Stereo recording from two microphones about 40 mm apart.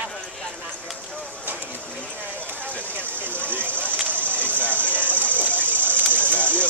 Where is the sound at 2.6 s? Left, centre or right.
Left.